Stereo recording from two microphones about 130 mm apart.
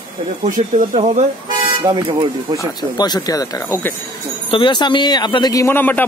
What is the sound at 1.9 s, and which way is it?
Speech, 35° right (ahead or behind).